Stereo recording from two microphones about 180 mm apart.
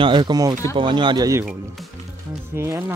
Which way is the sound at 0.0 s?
25° right (ahead or behind).